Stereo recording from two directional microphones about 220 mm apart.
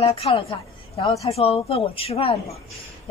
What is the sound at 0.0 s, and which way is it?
A woman's voice, 25° left (ahead or behind).